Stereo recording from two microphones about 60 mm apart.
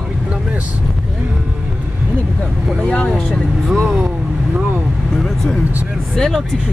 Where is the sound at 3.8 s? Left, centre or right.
Centre.